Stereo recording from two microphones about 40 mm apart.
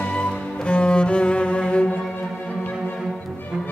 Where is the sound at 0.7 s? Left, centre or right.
Left.